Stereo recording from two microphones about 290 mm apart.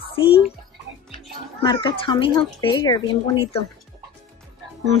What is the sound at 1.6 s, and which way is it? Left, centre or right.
Speech, centre.